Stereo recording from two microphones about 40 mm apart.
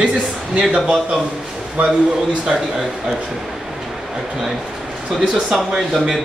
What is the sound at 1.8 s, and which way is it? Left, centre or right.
Speech, right.